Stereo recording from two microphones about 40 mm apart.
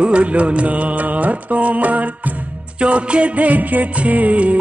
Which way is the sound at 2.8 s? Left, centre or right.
Right.